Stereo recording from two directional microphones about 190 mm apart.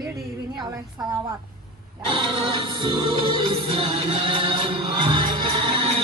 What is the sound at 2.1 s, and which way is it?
Music, 30° right (ahead or behind).